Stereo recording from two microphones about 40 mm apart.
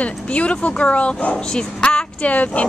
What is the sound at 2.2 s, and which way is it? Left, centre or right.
Speech, left.